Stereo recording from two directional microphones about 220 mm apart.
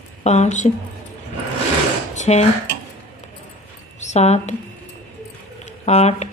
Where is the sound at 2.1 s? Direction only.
30° left (ahead or behind).